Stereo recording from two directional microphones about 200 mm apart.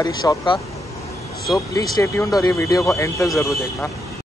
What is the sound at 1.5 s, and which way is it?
Speech, 15° left (ahead or behind).